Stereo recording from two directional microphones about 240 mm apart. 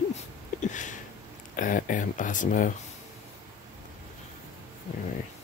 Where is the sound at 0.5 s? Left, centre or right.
Left.